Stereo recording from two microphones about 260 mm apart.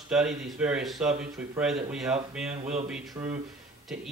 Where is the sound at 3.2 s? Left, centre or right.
Centre.